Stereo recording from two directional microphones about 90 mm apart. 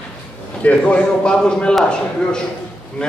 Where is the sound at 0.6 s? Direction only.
15° left (ahead or behind).